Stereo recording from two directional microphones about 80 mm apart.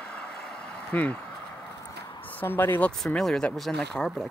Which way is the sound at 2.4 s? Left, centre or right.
Left.